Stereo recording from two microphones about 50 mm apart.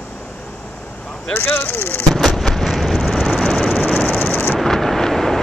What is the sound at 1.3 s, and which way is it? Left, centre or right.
Speech, left.